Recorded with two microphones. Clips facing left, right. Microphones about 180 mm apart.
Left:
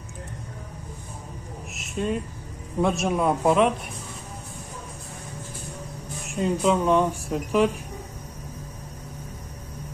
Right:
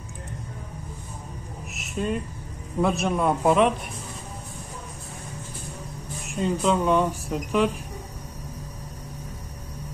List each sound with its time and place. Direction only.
1.7 s a sound: centre (ahead or behind)
2.8 s speech: centre (ahead or behind)
6.2 s speech: 5° left (ahead or behind)